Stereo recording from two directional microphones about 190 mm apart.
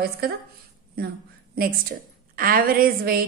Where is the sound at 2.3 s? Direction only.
50° right (ahead or behind).